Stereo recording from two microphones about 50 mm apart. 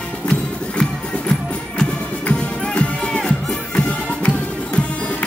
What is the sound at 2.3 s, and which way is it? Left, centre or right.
Music, left.